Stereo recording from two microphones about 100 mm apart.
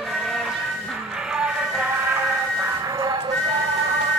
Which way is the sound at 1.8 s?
20° right (ahead or behind).